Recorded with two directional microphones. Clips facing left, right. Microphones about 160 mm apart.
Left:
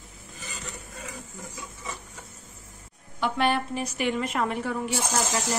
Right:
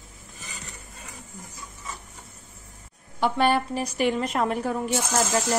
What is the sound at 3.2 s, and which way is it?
Speech, 35° right (ahead or behind).